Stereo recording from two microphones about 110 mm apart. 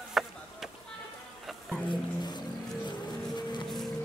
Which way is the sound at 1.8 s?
40° left (ahead or behind).